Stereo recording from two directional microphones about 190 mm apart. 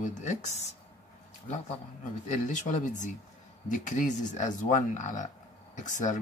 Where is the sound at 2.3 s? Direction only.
40° left (ahead or behind).